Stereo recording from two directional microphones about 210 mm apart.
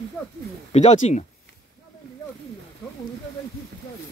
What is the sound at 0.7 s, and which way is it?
Speech, 30° left (ahead or behind).